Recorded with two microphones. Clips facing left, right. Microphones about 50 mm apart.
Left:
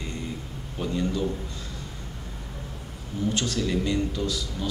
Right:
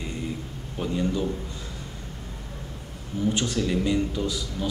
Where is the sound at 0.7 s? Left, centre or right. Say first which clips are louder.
Right 1 dB; centre.